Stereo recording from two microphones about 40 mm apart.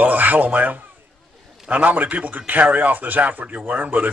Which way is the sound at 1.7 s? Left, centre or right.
Right.